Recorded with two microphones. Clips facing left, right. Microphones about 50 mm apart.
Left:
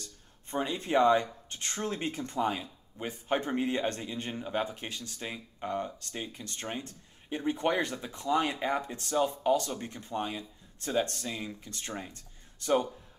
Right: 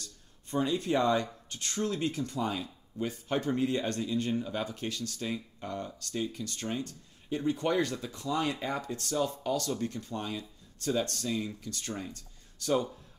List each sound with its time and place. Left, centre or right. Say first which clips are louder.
0.0 s speech: left 1 dB; left